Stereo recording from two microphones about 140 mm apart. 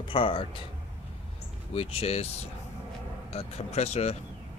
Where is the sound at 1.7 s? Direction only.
45° left (ahead or behind).